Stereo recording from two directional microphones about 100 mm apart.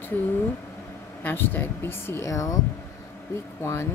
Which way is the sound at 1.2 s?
20° left (ahead or behind).